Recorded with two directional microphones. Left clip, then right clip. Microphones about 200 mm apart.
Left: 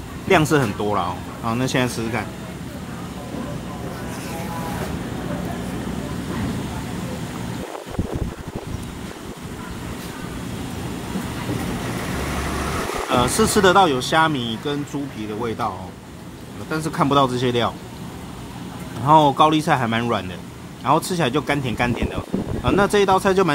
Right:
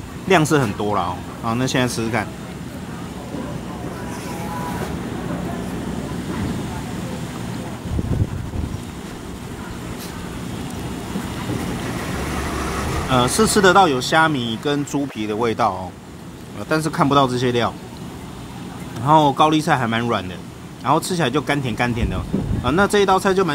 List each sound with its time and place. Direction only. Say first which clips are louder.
0.3 s speech: right 1 dB; centre (ahead or behind)
13.1 s speech: right 2 dB; 5° right (ahead or behind)
14.6 s speech: right 4 dB; 20° right (ahead or behind)
16.8 s speech: even; 5° right (ahead or behind)
19.0 s speech: even; centre (ahead or behind)